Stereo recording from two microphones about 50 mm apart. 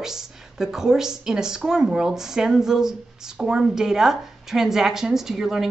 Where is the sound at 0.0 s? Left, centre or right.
Centre.